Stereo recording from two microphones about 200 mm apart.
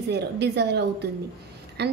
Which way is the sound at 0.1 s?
55° right (ahead or behind).